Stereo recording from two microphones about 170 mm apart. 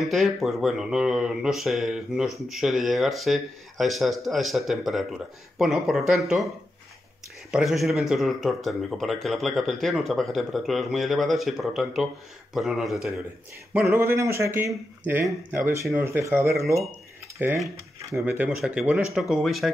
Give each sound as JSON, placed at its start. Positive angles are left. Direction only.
{"t": 0.0, "sound": "speech", "side_deg": 0}
{"t": 7.5, "sound": "speech", "side_deg": 0}
{"t": 13.7, "sound": "speech", "side_deg": -15}